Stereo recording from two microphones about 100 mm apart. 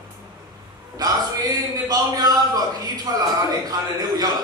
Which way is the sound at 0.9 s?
40° right (ahead or behind).